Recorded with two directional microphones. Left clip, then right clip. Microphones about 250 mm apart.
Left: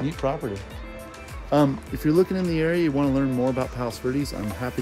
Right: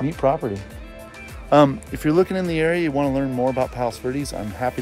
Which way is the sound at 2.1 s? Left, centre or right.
Centre.